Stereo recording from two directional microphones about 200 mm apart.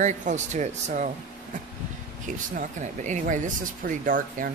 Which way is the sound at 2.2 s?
40° right (ahead or behind).